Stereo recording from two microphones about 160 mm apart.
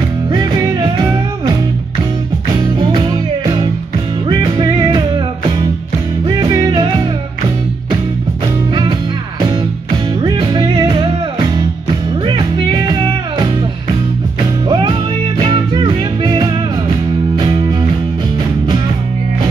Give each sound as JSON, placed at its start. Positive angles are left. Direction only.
{"t": 0.3, "sound": "music", "side_deg": -30}
{"t": 2.8, "sound": "music", "side_deg": -30}
{"t": 6.2, "sound": "music", "side_deg": -25}
{"t": 10.2, "sound": "music", "side_deg": -25}
{"t": 14.7, "sound": "music", "side_deg": -30}
{"t": 17.5, "sound": "music", "side_deg": -30}